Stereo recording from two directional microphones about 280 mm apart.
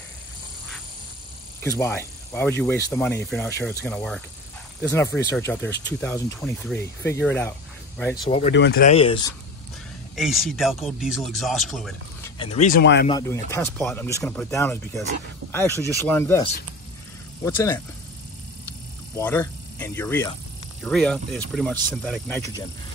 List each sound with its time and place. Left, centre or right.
1.6 s speech: centre
8.4 s speech: left
8.9 s speech: centre
10.1 s speech: centre
12.4 s speech: left
12.8 s speech: left
13.1 s speech: centre
17.6 s speech: centre
19.1 s speech: centre